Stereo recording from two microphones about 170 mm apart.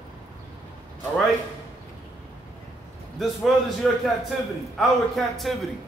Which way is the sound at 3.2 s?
Centre (ahead or behind).